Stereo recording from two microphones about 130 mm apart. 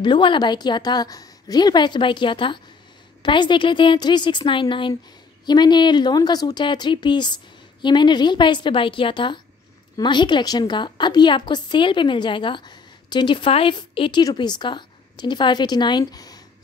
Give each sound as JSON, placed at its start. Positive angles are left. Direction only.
{"t": 0.0, "sound": "a woman's voice", "side_deg": 40}